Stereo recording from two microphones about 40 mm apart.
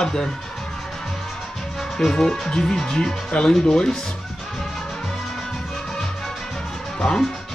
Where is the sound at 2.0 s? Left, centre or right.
Centre.